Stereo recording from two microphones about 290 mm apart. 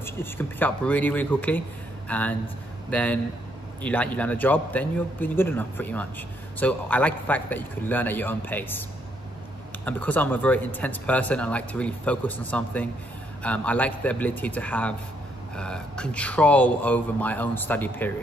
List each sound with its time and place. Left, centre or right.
0.0 s a man's voice: centre
9.8 s a man's voice: centre